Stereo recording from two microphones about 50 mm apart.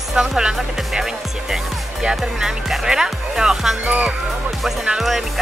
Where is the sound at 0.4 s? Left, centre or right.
Centre.